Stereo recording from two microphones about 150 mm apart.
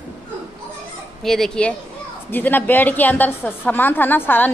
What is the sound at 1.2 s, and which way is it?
A woman's voice, centre (ahead or behind).